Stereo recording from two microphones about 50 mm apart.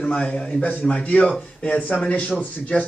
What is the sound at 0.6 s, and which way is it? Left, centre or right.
A man's voice, left.